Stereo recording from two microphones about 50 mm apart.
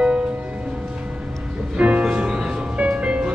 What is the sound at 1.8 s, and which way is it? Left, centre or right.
Music, centre.